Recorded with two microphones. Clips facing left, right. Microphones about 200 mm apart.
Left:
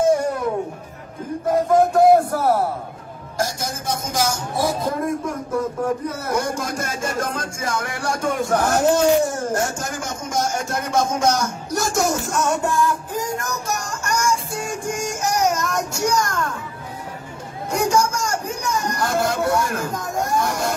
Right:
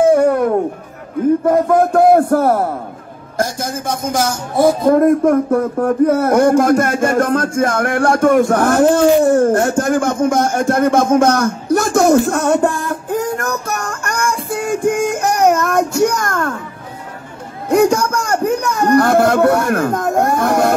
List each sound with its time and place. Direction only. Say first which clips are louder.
0.0 s music: right 7 dB; 55° right (ahead or behind)
1.4 s speech: right 4 dB; 55° right (ahead or behind)
17.6 s a man's voice: right 7 dB; 60° right (ahead or behind)